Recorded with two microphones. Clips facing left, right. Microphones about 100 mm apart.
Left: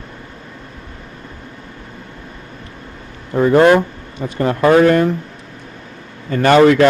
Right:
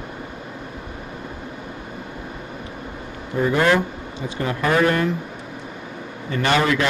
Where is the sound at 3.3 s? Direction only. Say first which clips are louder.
Left 8 dB; 50° left (ahead or behind).